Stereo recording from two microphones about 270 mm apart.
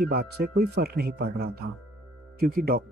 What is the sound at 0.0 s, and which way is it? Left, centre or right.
Speech, right.